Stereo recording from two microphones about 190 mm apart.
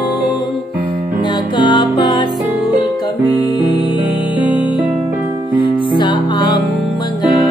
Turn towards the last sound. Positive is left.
turn(degrees=25)  # may be behind; listen again after turning